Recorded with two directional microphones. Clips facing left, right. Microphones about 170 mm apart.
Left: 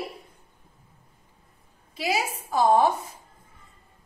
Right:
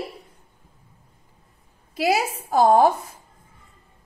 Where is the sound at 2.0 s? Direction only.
65° right (ahead or behind).